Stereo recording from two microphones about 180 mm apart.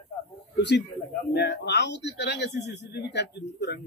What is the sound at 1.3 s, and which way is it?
A man's voice, 70° left (ahead or behind).